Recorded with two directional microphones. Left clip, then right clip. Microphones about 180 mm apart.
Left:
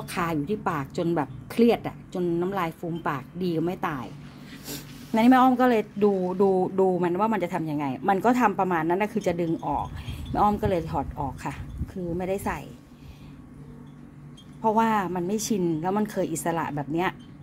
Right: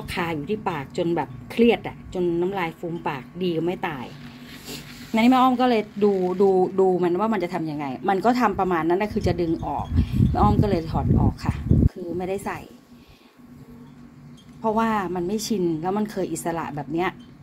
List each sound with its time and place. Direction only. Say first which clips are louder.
0.0 s a woman's voice: right 1 dB; 20° left (ahead or behind)
14.6 s speech: even; 10° left (ahead or behind)